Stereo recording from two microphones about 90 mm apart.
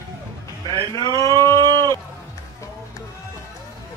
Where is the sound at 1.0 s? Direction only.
40° left (ahead or behind).